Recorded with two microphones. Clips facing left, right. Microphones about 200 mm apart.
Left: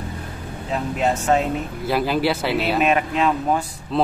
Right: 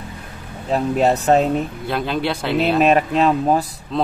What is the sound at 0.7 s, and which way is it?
Speech, 35° right (ahead or behind).